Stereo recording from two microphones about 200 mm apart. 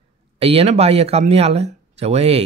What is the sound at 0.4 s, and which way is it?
Speech, 30° right (ahead or behind).